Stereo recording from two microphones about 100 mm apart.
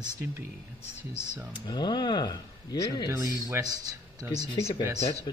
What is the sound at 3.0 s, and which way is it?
Speech, 35° right (ahead or behind).